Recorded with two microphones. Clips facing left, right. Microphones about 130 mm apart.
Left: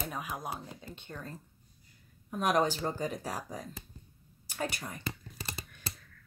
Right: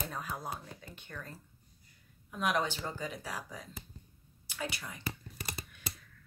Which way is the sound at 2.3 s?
40° left (ahead or behind).